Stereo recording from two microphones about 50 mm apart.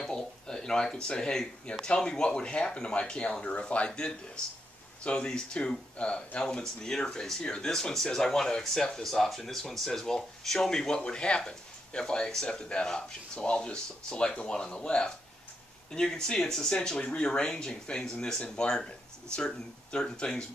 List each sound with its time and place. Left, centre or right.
0.0 s speech: centre